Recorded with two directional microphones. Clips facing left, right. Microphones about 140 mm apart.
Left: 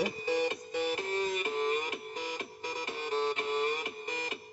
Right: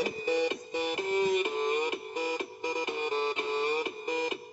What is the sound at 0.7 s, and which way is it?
Music, 20° right (ahead or behind).